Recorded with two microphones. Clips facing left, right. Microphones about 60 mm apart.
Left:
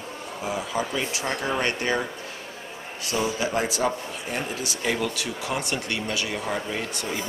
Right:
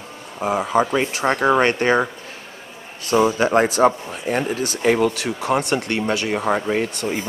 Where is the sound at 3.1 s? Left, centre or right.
Right.